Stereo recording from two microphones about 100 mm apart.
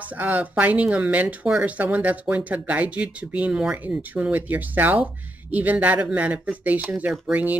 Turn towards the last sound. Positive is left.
turn(degrees=-15)  # may be behind; listen again after turning